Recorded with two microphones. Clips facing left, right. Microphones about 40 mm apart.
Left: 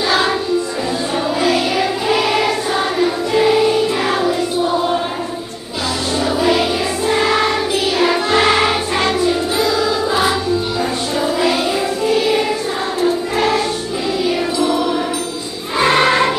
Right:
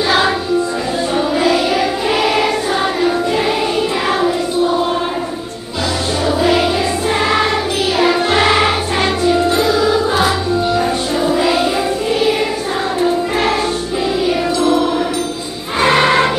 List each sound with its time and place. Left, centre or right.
0.0 s music: centre
6.1 s music: centre
7.2 s choir: centre
9.8 s music: right
11.1 s music: centre
15.8 s choir: centre